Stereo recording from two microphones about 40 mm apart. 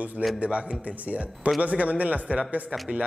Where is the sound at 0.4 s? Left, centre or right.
Right.